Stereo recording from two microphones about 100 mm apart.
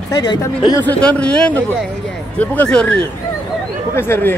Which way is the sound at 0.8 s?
15° left (ahead or behind).